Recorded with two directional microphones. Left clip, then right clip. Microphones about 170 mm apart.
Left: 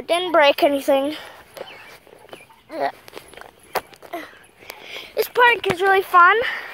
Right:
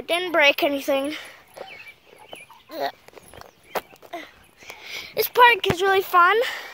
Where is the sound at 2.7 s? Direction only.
Centre (ahead or behind).